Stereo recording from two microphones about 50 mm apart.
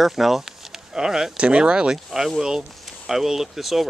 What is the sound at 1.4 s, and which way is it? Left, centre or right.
Speech, right.